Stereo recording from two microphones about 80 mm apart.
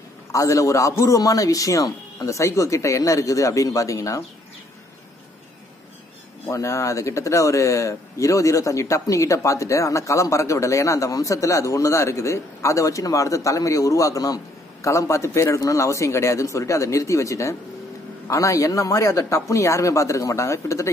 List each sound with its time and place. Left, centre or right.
0.3 s a man's voice: left
6.4 s speech: left